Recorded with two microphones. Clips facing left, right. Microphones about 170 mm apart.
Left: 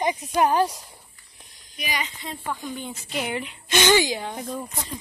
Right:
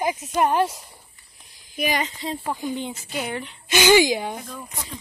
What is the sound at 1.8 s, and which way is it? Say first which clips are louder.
Speech: right 6 dB; 45° right (ahead or behind).